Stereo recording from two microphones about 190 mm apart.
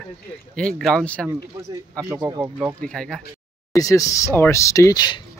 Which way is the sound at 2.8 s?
5° left (ahead or behind).